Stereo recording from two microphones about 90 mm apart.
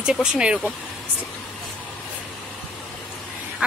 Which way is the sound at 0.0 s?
5° right (ahead or behind).